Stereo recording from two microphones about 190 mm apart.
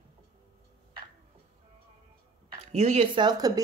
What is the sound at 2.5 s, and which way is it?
Speech, 35° right (ahead or behind).